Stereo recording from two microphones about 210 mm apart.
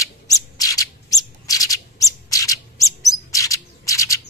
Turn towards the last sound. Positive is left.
turn(degrees=15)  # may be behind; listen again after turning